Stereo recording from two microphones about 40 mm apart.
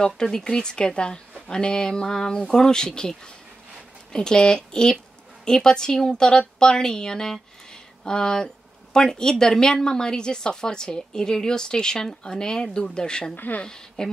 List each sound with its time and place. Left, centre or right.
0.0 s a woman's voice: centre